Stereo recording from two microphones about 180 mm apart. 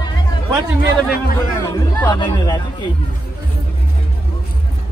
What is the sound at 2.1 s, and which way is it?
Speech, 20° left (ahead or behind).